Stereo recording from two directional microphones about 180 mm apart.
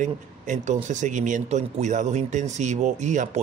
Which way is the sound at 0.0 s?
45° right (ahead or behind).